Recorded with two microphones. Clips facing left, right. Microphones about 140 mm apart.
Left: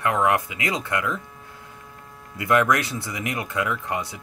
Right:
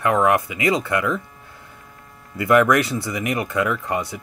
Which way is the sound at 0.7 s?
75° right (ahead or behind).